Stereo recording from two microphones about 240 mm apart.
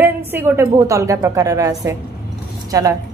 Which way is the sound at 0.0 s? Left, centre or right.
Centre.